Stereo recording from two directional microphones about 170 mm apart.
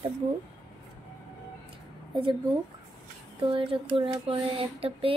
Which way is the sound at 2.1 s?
30° right (ahead or behind).